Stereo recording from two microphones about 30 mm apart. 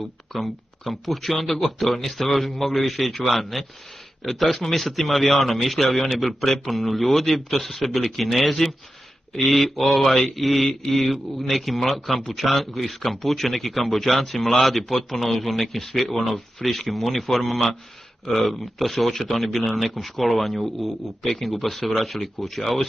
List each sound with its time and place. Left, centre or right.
0.3 s speech: centre